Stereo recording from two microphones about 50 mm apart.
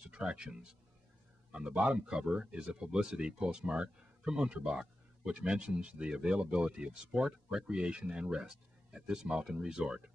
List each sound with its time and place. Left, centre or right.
0.1 s speech: centre
1.8 s speech: right